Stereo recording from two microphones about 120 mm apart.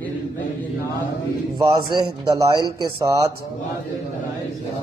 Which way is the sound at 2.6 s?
35° right (ahead or behind).